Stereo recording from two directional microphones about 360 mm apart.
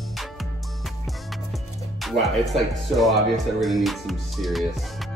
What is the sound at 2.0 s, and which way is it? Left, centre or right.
Speech, centre.